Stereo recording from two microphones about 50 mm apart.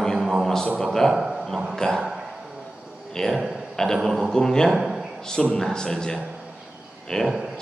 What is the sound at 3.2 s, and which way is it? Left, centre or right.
Speech, centre.